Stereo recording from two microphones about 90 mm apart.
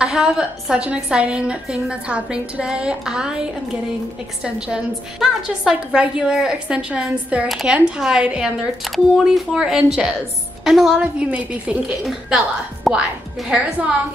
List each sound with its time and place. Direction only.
0.0 s a woman's voice: 5° right (ahead or behind)
4.6 s a woman's voice: 10° right (ahead or behind)
7.4 s a woman's voice: centre (ahead or behind)
12.0 s a woman's voice: 5° right (ahead or behind)